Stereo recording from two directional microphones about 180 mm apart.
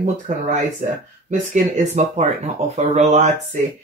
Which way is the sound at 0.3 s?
45° right (ahead or behind).